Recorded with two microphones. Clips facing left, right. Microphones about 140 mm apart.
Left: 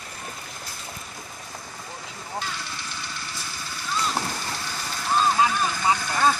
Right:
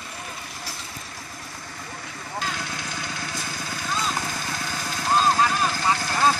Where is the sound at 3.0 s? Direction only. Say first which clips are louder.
Right 4 dB; 50° right (ahead or behind).